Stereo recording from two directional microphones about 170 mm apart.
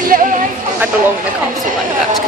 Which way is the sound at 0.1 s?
55° right (ahead or behind).